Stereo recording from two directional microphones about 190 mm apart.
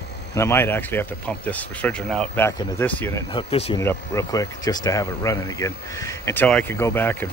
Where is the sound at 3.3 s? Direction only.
25° left (ahead or behind).